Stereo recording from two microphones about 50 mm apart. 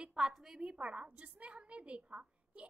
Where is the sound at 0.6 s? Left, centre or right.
Right.